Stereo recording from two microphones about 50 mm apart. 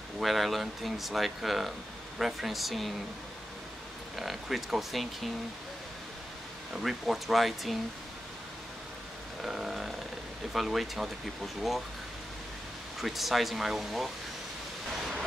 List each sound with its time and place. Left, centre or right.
0.2 s speech: centre
4.2 s speech: centre
6.7 s speech: centre
9.4 s a sound: centre
10.5 s speech: centre
13.0 s speech: centre